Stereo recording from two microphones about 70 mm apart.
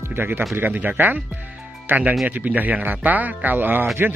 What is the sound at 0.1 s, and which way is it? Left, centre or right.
Speech, right.